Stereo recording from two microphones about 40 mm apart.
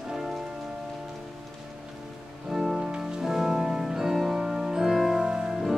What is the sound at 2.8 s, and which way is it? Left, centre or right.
Music, right.